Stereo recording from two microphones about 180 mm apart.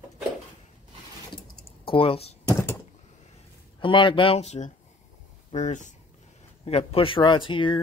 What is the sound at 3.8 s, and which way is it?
Speech, 25° left (ahead or behind).